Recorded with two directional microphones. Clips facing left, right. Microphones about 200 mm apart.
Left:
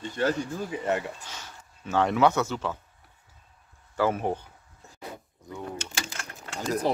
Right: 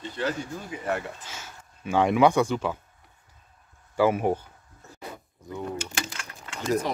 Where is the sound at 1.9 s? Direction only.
15° right (ahead or behind).